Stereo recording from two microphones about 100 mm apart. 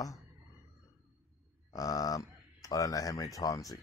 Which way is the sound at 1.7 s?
35° left (ahead or behind).